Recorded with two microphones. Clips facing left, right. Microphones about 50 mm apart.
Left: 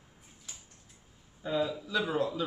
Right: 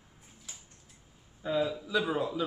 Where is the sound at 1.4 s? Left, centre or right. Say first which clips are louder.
Right 1 dB; centre.